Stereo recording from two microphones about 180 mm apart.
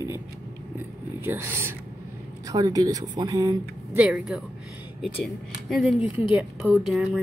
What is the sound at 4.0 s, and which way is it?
Speech, 5° right (ahead or behind).